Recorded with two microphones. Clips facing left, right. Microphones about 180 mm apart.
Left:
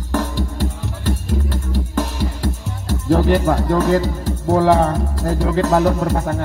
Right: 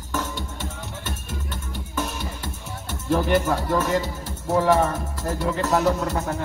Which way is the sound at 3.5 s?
35° left (ahead or behind).